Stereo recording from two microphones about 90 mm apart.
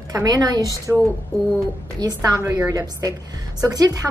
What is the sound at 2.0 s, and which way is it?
A woman's voice, 35° right (ahead or behind).